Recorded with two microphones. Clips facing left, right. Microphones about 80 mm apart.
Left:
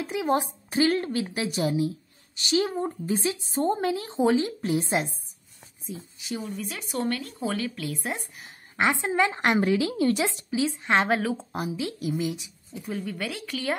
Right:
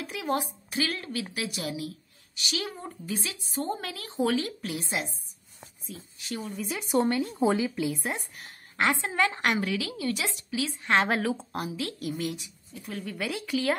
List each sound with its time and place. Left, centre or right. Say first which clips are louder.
0.0 s a woman's voice: left 5 dB; left
5.9 s speech: left 3 dB; centre
6.4 s speech: even; centre
6.9 s speech: right 4 dB; right
7.5 s a woman's voice: right 3 dB; centre
8.7 s speech: left 3 dB; centre
9.6 s speech: left 7 dB; left
10.2 s a woman's voice: left 5 dB; left
11.0 s a woman's voice: left 1 dB; centre
13.1 s a woman's voice: right 2 dB; centre